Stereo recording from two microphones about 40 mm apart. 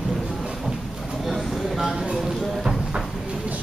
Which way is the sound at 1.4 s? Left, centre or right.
Centre.